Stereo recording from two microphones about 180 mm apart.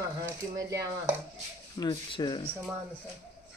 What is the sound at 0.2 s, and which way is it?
Speech, 20° right (ahead or behind).